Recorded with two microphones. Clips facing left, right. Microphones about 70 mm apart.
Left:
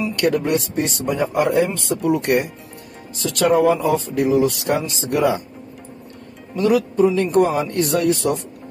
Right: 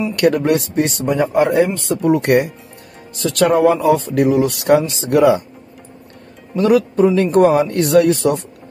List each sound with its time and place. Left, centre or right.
0.2 s speech: right
4.1 s speech: right
6.5 s speech: right